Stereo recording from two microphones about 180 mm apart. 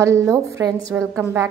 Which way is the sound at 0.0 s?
15° right (ahead or behind).